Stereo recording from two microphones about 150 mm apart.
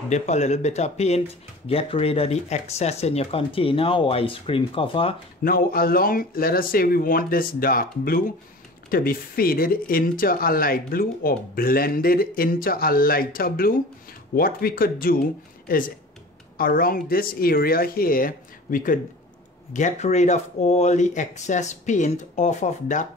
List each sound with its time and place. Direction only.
0.1 s speech: 50° left (ahead or behind)
5.4 s speech: 75° left (ahead or behind)
19.7 s speech: 50° left (ahead or behind)